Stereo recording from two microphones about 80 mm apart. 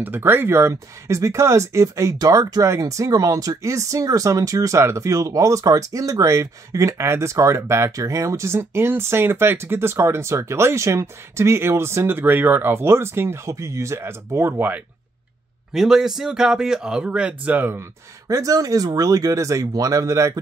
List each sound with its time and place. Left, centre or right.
0.0 s speech: right
15.7 s speech: centre; by 17.7 s right
18.3 s speech: right